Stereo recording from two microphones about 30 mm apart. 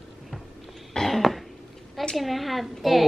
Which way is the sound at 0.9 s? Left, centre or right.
Centre.